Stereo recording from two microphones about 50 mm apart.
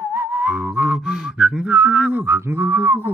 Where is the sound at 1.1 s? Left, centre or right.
Centre.